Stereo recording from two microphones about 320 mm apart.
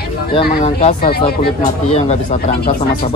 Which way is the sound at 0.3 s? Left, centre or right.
Centre.